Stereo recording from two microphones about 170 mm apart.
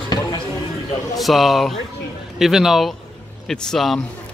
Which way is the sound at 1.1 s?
Centre (ahead or behind).